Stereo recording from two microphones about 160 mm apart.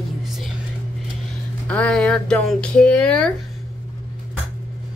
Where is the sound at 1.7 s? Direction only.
5° left (ahead or behind).